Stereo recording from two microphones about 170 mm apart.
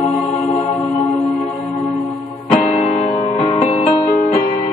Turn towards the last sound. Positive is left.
turn(degrees=30)  # may be behind; listen again after turning